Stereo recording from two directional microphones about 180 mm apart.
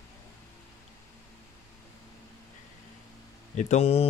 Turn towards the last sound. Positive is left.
turn(degrees=35)  # may be behind; listen again after turning